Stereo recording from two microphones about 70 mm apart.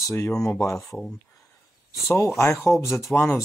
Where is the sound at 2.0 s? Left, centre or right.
Left.